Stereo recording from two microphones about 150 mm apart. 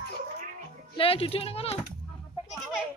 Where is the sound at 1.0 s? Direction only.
40° left (ahead or behind).